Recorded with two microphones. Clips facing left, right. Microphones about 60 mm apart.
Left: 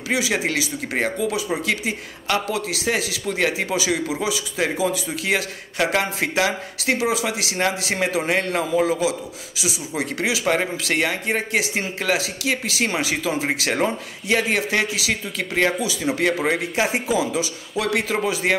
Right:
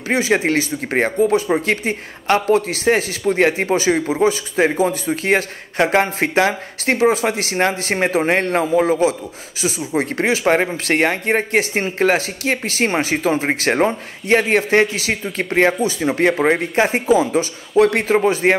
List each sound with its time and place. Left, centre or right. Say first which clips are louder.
0.1 s speech: right 6 dB; right